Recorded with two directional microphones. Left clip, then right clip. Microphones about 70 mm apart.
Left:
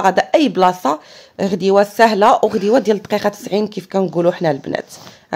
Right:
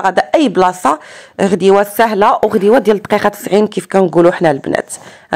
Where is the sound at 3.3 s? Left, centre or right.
Right.